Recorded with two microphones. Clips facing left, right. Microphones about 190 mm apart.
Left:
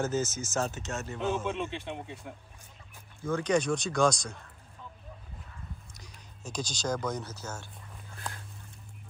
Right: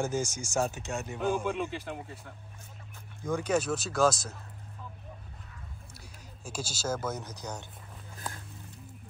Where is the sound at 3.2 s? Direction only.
10° right (ahead or behind).